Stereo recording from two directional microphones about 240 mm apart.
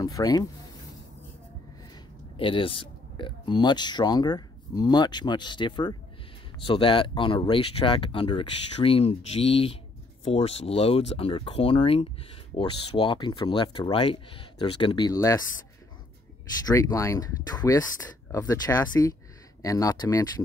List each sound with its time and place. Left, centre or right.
0.0 s speech: centre
2.3 s speech: left
16.6 s speech: centre